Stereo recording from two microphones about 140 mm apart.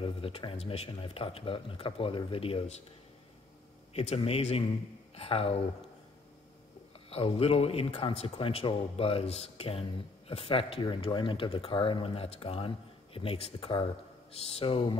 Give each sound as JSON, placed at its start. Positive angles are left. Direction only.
{"t": 0.0, "sound": "speech", "side_deg": 40}
{"t": 3.9, "sound": "a man's voice", "side_deg": 45}
{"t": 7.1, "sound": "speech", "side_deg": 45}